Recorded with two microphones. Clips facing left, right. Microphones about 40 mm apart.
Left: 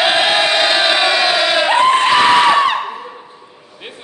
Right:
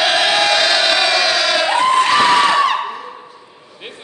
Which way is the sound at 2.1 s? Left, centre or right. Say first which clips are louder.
Left 2 dB; centre.